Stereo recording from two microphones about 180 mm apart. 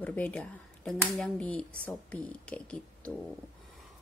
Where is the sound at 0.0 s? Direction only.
10° left (ahead or behind).